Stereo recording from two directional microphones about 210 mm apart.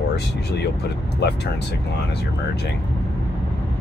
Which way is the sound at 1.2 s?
50° left (ahead or behind).